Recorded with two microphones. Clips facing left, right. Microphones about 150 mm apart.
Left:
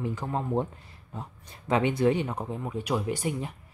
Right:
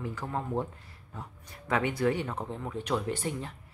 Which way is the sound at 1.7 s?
20° left (ahead or behind).